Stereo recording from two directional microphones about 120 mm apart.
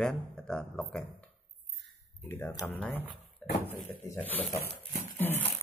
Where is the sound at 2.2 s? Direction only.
20° left (ahead or behind).